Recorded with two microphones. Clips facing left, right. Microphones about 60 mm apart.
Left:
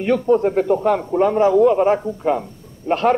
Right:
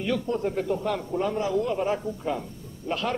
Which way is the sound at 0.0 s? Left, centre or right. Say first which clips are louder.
Left 11 dB; left.